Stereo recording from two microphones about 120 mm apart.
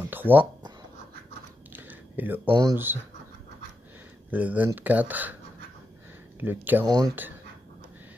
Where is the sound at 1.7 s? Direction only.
15° right (ahead or behind).